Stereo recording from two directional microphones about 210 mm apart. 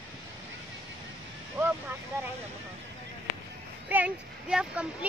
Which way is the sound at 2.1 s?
15° right (ahead or behind).